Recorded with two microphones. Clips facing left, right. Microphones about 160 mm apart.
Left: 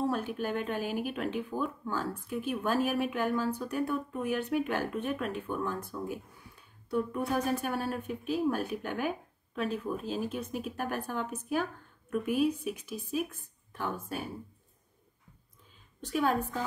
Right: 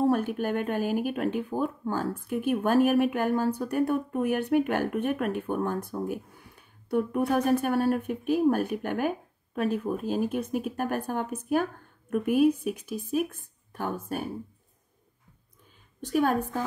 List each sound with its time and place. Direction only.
0.0 s speech: 55° right (ahead or behind)
16.1 s speech: 50° right (ahead or behind)